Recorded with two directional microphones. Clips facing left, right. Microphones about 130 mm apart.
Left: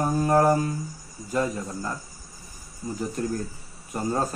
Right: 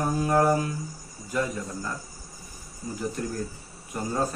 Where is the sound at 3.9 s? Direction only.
35° left (ahead or behind).